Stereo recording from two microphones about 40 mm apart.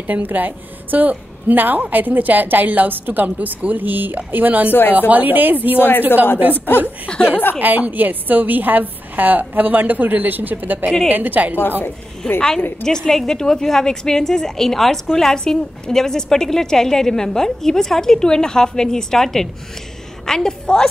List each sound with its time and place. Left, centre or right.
0.0 s a woman's voice: right
4.6 s speech: left
5.1 s a woman's voice: right
5.8 s speech: left
7.5 s a woman's voice: right
12.4 s a woman's voice: left